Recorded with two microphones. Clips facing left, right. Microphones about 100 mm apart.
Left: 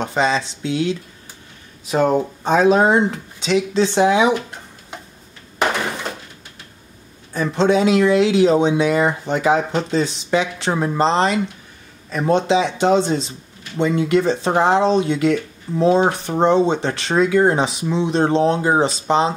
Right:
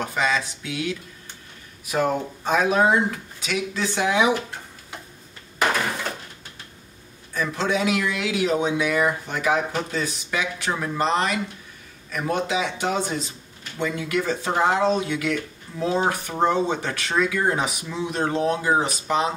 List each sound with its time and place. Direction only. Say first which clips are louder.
0.0 s speech: left 5 dB; 30° left (ahead or behind)
7.3 s speech: left 7 dB; 30° left (ahead or behind)